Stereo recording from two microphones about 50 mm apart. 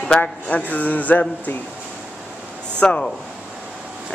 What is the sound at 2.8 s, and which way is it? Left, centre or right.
Speech, centre.